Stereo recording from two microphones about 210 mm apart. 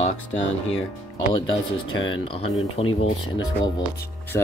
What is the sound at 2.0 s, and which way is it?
Speech, 70° left (ahead or behind).